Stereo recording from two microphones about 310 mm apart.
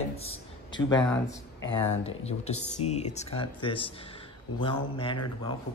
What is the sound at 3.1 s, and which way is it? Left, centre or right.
Speech, centre.